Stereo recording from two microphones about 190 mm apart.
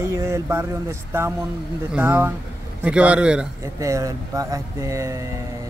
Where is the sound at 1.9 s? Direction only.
10° right (ahead or behind).